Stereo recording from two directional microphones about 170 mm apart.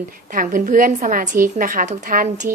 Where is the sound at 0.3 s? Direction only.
55° right (ahead or behind).